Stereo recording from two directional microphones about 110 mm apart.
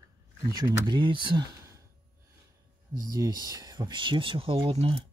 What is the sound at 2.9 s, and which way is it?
Speech, 35° right (ahead or behind).